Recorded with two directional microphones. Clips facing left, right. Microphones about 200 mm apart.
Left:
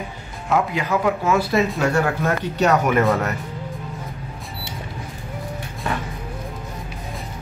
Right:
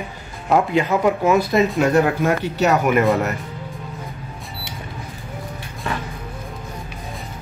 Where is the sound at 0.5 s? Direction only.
25° right (ahead or behind).